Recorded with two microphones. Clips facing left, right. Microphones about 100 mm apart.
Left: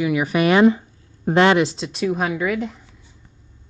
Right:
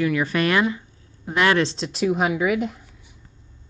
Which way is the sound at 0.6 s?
30° left (ahead or behind).